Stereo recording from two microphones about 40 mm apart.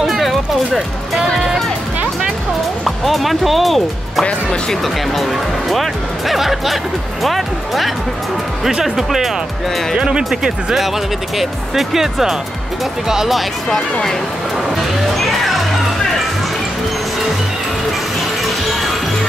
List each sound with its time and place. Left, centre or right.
0.0 s music: centre
0.7 s speech: centre
2.8 s speech: centre
4.2 s speech: centre
4.8 s speech: centre
9.9 s speech: centre
11.3 s speech: centre
13.3 s speech: centre
15.1 s music: centre